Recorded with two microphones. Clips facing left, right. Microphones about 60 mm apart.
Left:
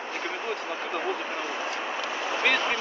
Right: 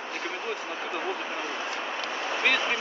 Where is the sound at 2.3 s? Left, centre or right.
Centre.